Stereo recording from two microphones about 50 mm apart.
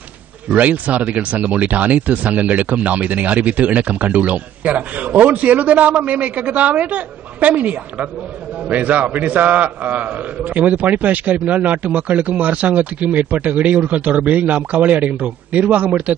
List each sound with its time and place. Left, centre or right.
0.5 s a man's voice: right